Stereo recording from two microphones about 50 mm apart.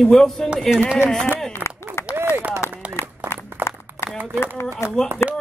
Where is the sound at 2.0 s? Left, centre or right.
Left.